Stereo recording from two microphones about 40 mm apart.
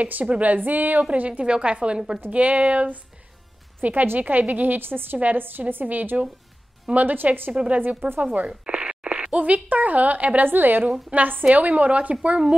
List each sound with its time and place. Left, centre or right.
0.0 s a woman's voice: right
1.1 s a woman's voice: right
1.4 s a woman's voice: right
3.8 s a woman's voice: right
5.2 s a woman's voice: right
8.5 s a sound: right
9.4 s a woman's voice: right
10.4 s a woman's voice: right
10.9 s a woman's voice: right